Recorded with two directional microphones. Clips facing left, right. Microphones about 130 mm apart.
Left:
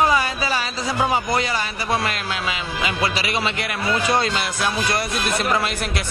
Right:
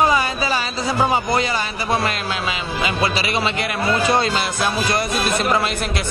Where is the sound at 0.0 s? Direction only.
20° right (ahead or behind).